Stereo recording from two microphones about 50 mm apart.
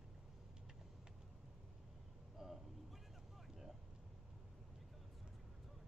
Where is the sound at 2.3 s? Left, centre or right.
Centre.